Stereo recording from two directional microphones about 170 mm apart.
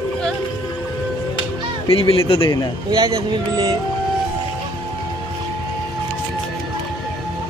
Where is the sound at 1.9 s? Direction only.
35° left (ahead or behind).